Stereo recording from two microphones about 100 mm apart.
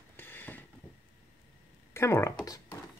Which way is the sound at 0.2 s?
20° left (ahead or behind).